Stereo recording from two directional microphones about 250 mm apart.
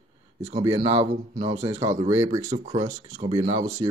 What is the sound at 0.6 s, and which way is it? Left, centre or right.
Speech, centre.